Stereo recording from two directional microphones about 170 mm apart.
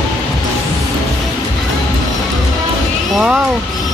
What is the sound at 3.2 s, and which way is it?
Speech, 5° right (ahead or behind).